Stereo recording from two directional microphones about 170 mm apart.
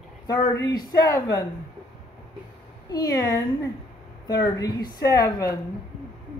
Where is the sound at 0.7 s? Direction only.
20° left (ahead or behind).